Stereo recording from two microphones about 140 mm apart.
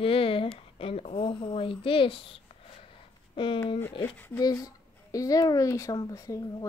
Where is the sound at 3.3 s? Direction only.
35° left (ahead or behind).